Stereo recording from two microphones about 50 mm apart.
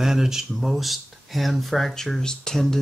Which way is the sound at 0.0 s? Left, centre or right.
Centre.